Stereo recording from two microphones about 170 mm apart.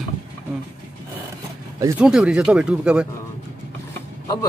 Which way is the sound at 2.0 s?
5° right (ahead or behind).